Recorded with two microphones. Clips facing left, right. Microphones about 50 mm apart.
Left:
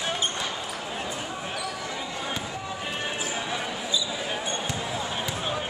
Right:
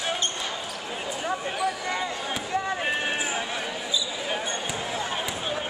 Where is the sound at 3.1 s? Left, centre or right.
Right.